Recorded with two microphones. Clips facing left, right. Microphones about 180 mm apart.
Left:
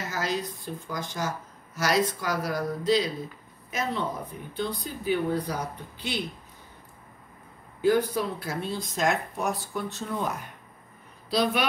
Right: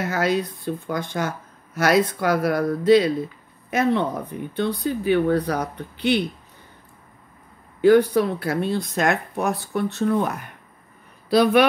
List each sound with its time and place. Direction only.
0.0 s speech: 60° right (ahead or behind)
7.8 s speech: 70° right (ahead or behind)